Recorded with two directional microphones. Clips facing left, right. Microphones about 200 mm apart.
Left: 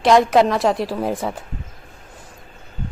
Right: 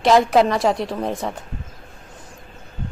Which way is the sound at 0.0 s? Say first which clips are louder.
Left 1 dB; centre (ahead or behind).